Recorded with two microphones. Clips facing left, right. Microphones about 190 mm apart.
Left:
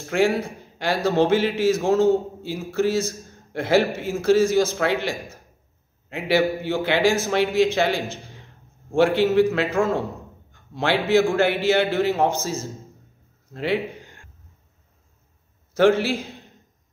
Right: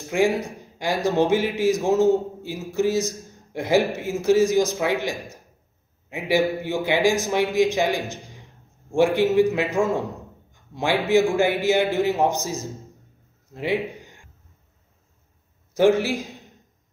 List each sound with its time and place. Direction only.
0.1 s a man's voice: 15° right (ahead or behind)
13.5 s a sound: 15° right (ahead or behind)
15.7 s a man's voice: 15° right (ahead or behind)